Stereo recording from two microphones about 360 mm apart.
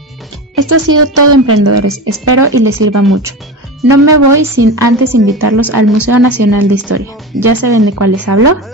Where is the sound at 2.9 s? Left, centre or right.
Right.